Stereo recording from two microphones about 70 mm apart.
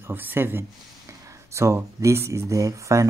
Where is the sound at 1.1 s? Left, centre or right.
Right.